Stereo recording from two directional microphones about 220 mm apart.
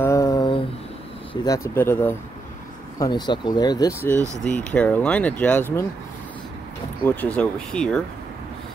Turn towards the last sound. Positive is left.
turn(degrees=5)  # may be behind; listen again after turning